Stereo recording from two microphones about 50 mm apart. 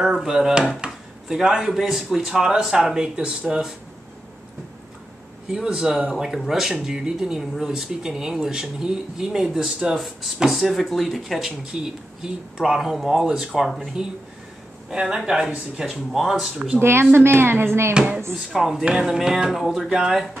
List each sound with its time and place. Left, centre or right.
0.0 s speech: centre
5.5 s speech: centre
11.6 s speech: centre
16.1 s speech: centre
17.2 s a woman's voice: right
17.9 s speech: right
18.3 s speech: centre